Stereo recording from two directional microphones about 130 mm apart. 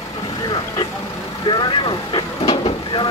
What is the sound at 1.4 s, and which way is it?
Speech, 35° left (ahead or behind).